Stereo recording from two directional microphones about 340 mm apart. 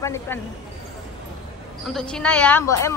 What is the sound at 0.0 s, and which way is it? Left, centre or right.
Speech, centre.